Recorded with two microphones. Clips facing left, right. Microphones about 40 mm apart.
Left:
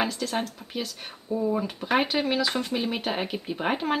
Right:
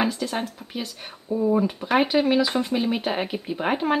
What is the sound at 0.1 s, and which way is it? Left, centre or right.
Speech, centre.